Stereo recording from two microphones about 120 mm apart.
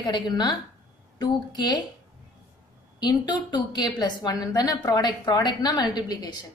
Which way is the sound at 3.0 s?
35° left (ahead or behind).